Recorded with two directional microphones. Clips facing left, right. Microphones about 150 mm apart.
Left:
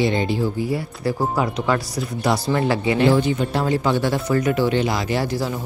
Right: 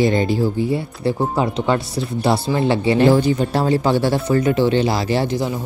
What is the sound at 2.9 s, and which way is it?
Speech, 40° right (ahead or behind).